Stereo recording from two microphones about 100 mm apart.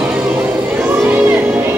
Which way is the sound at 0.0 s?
15° right (ahead or behind).